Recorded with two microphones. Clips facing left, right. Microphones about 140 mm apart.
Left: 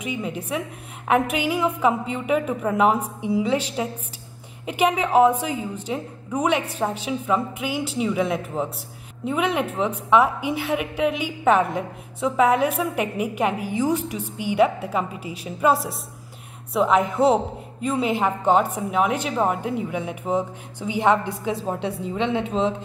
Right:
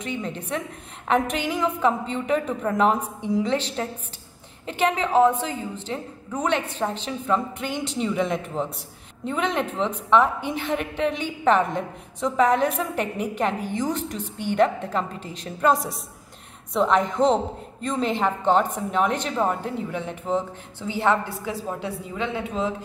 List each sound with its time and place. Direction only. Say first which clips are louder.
0.0 s a woman's voice: left 2 dB; 10° left (ahead or behind); by 22.8 s 25° left (ahead or behind)